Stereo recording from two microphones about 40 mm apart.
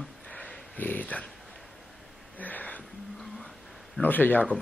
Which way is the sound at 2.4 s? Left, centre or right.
Left.